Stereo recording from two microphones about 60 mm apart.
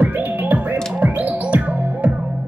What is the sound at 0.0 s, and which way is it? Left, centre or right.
Music, right.